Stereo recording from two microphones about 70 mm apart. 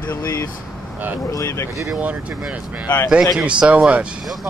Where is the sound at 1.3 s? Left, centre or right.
Left.